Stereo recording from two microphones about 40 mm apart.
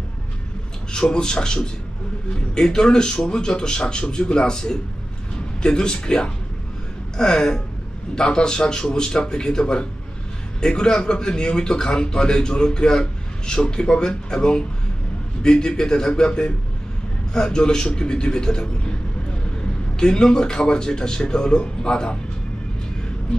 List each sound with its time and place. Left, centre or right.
0.9 s a man's voice: centre
20.0 s a man's voice: centre